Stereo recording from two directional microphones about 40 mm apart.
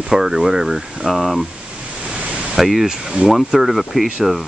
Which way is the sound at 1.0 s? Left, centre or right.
Centre.